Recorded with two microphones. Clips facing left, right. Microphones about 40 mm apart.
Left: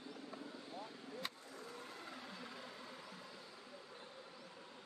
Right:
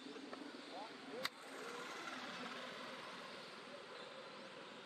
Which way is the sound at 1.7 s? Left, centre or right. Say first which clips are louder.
Right 4 dB; right.